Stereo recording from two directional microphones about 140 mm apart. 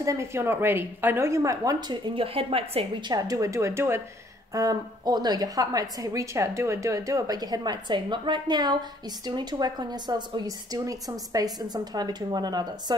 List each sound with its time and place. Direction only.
0.0 s a woman's voice: 20° right (ahead or behind); by 3.1 s 45° right (ahead or behind)
3.1 s a woman's voice: 25° right (ahead or behind)